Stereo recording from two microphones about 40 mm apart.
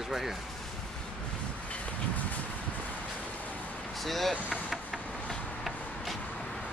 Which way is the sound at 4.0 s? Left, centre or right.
Centre.